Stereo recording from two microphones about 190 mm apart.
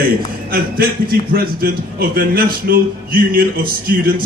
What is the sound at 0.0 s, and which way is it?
A man's voice, 50° right (ahead or behind).